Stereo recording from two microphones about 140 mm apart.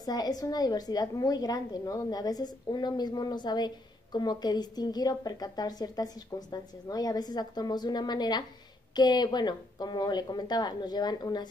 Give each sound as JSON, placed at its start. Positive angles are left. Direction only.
{"t": 0.0, "sound": "a woman's voice", "side_deg": 25}